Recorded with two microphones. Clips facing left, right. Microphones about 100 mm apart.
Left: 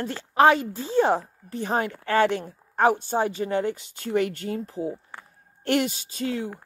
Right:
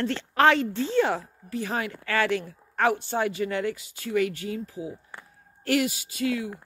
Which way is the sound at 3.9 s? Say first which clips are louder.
Left 1 dB; 45° left (ahead or behind).